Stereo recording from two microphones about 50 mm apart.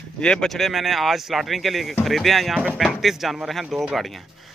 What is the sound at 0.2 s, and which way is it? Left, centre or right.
Speech, left.